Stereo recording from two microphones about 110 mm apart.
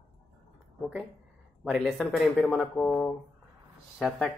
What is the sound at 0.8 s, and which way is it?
Speech, 10° right (ahead or behind).